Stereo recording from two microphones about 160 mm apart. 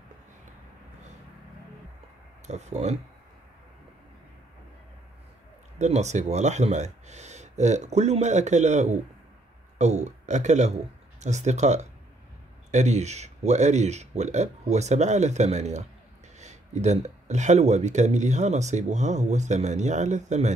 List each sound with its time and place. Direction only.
2.4 s speech: 45° right (ahead or behind)
5.8 s speech: 45° right (ahead or behind)